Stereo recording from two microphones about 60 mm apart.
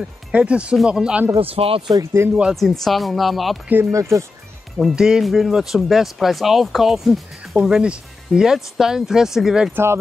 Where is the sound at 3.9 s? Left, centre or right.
Right.